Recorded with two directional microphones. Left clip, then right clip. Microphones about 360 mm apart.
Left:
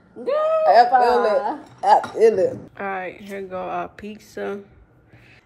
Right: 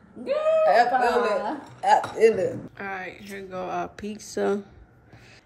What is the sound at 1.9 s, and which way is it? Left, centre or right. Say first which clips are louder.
Speech: left 4 dB; left.